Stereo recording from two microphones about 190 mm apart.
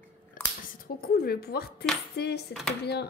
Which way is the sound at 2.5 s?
Centre (ahead or behind).